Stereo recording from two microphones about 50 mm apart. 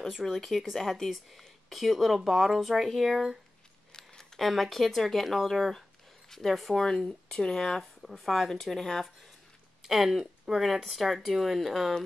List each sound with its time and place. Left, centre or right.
0.4 s speech: centre
3.9 s a sound: centre
4.5 s speech: centre
7.1 s speech: centre
9.8 s speech: centre